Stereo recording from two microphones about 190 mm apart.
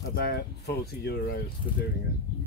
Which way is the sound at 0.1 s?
55° left (ahead or behind).